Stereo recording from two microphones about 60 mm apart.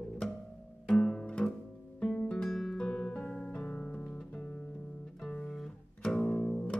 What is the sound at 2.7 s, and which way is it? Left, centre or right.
Music, centre.